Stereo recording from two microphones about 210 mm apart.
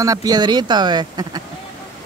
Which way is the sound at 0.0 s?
15° right (ahead or behind).